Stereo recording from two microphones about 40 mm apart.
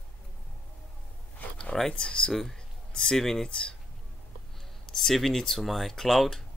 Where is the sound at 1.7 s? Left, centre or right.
Centre.